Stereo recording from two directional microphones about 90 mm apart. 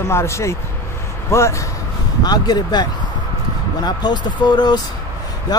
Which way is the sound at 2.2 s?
50° left (ahead or behind).